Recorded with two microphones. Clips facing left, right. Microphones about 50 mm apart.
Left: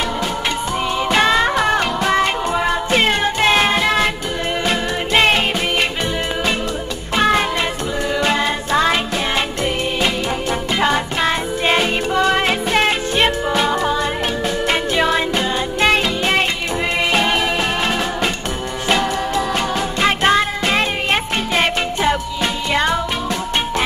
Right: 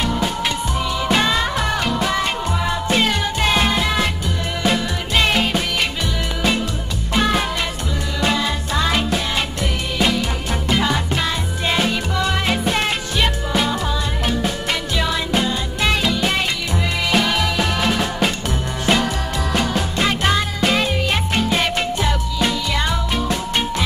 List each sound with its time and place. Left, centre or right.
1.1 s music: left
5.1 s music: left
7.2 s music: left
10.8 s music: left
12.6 s music: centre
14.7 s music: left
19.3 s music: centre
20.1 s music: left
22.7 s music: left